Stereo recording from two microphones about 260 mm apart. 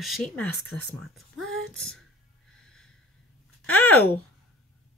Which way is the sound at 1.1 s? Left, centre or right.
Centre.